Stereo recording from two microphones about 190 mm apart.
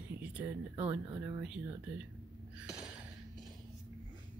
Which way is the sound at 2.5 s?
5° right (ahead or behind).